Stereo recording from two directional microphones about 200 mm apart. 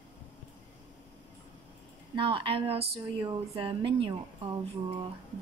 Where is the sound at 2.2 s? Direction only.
25° right (ahead or behind).